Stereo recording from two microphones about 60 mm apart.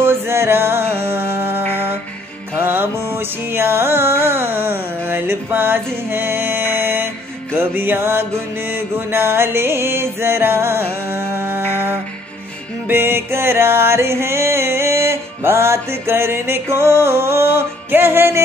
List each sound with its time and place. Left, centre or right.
0.0 s music: right